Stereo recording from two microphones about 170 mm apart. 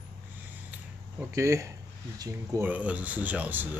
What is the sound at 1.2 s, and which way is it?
Speech, 15° right (ahead or behind).